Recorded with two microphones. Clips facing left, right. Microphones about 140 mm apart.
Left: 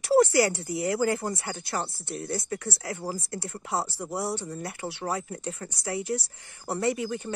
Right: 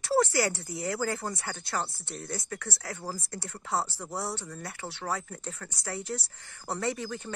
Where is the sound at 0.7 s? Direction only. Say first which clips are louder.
Left 6 dB; 20° left (ahead or behind).